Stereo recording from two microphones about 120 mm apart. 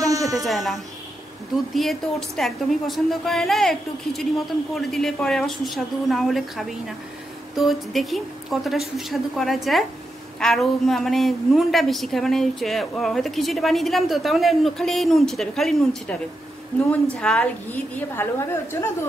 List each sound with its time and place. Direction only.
0.0 s a sound: 30° right (ahead or behind)
0.5 s a woman's voice: centre (ahead or behind)
18.1 s a woman's voice: 20° left (ahead or behind)